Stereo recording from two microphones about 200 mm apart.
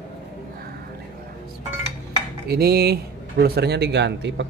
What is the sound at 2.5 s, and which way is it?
Speech, 50° right (ahead or behind).